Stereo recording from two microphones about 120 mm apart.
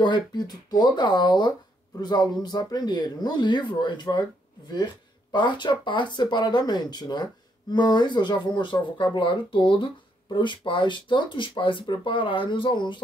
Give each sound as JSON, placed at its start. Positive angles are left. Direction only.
{"t": 0.0, "sound": "speech", "side_deg": 40}
{"t": 5.3, "sound": "speech", "side_deg": 40}